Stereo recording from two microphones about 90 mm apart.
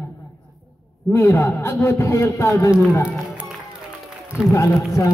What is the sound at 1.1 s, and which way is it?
A man's voice, 30° left (ahead or behind).